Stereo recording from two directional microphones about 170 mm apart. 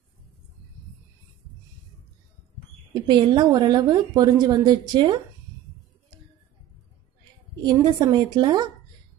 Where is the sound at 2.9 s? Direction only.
25° right (ahead or behind).